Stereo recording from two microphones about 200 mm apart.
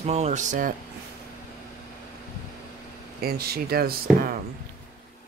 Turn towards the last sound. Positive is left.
turn(degrees=-45)  # may be behind; listen again after turning